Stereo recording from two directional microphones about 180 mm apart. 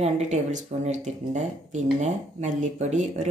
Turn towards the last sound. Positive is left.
turn(degrees=-40)  # may be behind; listen again after turning